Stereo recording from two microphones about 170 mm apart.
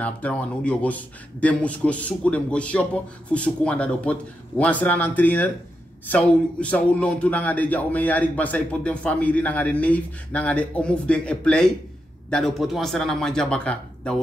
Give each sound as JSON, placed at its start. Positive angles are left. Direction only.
{"t": 0.0, "sound": "a man's voice", "side_deg": 10}